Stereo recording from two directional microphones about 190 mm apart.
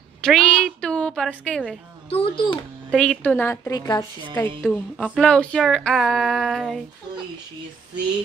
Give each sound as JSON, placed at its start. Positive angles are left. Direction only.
{"t": 0.2, "sound": "a sound", "side_deg": 0}
{"t": 2.0, "sound": "a child's voice", "side_deg": 30}
{"t": 2.9, "sound": "a woman's voice", "side_deg": 5}
{"t": 4.6, "sound": "speech", "side_deg": 5}